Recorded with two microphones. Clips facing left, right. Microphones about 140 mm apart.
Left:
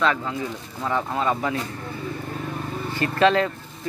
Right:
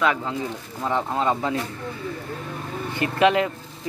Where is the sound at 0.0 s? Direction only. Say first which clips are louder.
Even; 20° right (ahead or behind).